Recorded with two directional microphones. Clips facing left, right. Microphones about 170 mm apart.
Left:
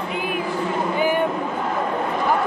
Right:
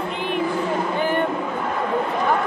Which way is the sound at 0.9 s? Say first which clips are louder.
Left 3 dB; 10° left (ahead or behind).